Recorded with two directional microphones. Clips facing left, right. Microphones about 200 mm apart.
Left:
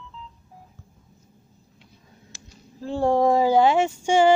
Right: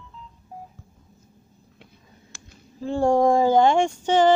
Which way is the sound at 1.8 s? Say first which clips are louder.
Right 1 dB; 55° right (ahead or behind).